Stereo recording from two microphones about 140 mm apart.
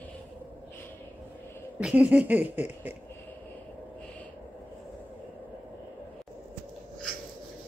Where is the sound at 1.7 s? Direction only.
10° right (ahead or behind).